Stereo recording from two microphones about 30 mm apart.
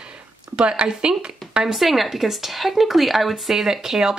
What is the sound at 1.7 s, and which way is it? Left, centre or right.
A woman's voice, centre.